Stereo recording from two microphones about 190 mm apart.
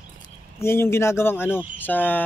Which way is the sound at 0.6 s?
15° left (ahead or behind).